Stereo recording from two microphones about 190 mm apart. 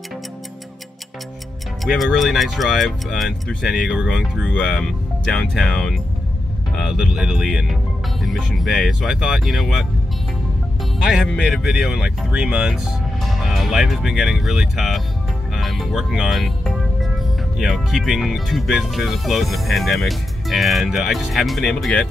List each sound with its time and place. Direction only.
1.9 s speech: centre (ahead or behind)
11.1 s speech: centre (ahead or behind)
15.5 s music: centre (ahead or behind)
17.6 s speech: centre (ahead or behind)